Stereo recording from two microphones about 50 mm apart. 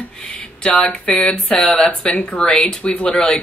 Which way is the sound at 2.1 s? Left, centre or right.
Left.